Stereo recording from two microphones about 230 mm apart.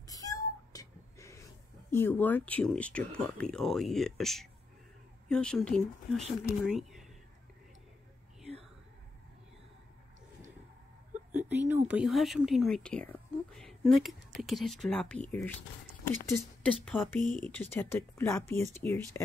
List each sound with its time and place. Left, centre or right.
0.0 s cat: centre
1.9 s speech: centre
11.3 s speech: centre
16.8 s speech: centre
17.2 s speech: left
17.5 s speech: centre